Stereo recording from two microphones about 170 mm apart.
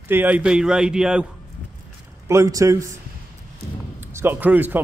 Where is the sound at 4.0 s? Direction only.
15° right (ahead or behind).